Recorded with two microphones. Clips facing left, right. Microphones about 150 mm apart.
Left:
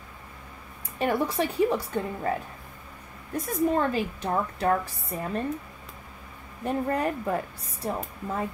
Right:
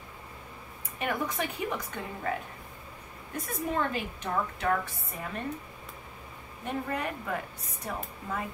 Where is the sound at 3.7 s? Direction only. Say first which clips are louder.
Left 5 dB; 35° left (ahead or behind).